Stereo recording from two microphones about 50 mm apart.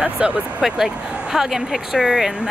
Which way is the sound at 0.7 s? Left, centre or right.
Centre.